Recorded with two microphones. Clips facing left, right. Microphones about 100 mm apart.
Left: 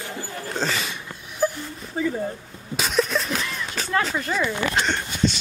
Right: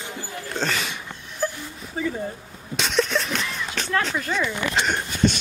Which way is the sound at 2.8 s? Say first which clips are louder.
Even; 5° left (ahead or behind).